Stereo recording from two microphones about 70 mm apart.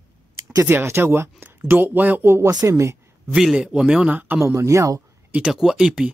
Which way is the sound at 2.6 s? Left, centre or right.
Right.